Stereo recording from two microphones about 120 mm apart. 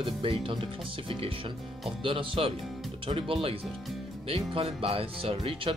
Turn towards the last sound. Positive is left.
turn(degrees=-50)  # may be behind; listen again after turning